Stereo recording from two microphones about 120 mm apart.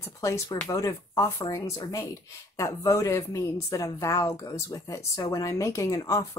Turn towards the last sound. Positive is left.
turn(degrees=30)  # may be behind; listen again after turning